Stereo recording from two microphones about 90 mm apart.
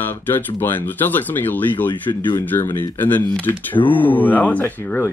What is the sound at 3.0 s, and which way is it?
Speech, 20° left (ahead or behind).